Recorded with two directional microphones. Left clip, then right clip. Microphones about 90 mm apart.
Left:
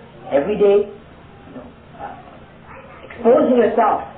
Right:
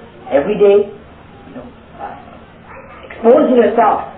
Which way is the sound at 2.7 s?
35° left (ahead or behind).